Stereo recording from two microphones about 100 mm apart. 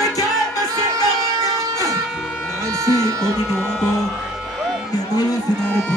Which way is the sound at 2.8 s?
30° right (ahead or behind).